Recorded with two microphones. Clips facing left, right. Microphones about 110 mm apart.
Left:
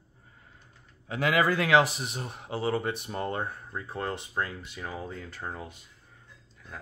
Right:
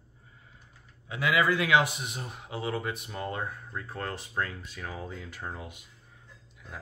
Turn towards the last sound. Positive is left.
turn(degrees=-5)  # may be behind; listen again after turning